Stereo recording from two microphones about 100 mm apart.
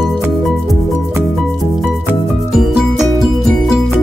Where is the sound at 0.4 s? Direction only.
5° left (ahead or behind).